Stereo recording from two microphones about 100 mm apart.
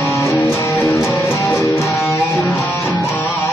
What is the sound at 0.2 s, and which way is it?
Music, 30° left (ahead or behind).